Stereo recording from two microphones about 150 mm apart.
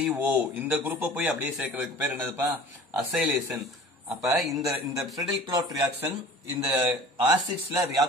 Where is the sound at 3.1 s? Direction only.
5° right (ahead or behind).